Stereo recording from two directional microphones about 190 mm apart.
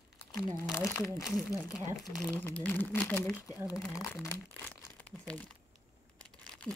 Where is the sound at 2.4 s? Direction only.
10° left (ahead or behind).